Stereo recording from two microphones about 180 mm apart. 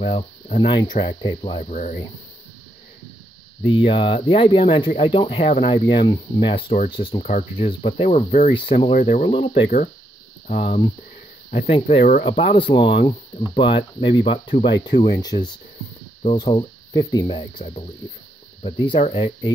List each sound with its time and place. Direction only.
0.0 s speech: 35° left (ahead or behind)
1.6 s speech: 45° left (ahead or behind)
3.6 s speech: 30° left (ahead or behind)